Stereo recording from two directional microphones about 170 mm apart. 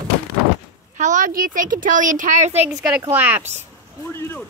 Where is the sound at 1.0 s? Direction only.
45° right (ahead or behind).